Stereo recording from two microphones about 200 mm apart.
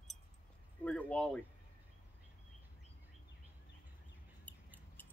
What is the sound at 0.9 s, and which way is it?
Speech, 5° left (ahead or behind).